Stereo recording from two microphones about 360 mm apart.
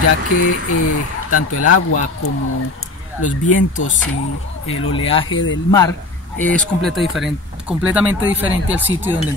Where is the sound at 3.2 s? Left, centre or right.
Left.